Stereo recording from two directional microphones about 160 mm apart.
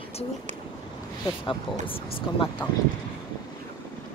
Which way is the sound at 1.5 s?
35° left (ahead or behind).